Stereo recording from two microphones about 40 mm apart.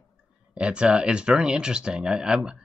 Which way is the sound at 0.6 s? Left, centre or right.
Right.